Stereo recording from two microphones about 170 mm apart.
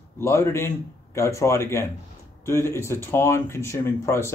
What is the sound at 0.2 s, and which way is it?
Speech, 15° left (ahead or behind).